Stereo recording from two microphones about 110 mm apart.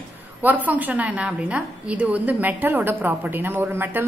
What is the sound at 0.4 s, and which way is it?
A woman's voice, 15° right (ahead or behind).